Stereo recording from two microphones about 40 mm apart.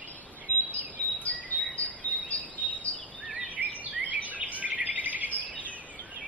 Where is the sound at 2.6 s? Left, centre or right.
Left.